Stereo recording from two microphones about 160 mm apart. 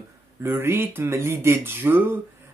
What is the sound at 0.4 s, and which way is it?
Speech, 15° right (ahead or behind).